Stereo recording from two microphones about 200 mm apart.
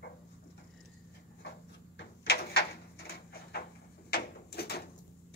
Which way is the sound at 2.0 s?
55° left (ahead or behind).